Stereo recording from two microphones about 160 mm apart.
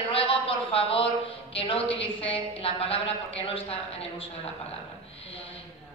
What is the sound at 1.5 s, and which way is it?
A woman's voice, 35° left (ahead or behind).